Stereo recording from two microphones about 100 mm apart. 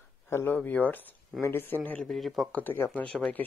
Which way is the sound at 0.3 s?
25° left (ahead or behind).